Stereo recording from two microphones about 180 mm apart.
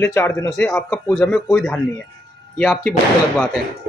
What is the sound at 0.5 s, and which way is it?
Speech, centre (ahead or behind).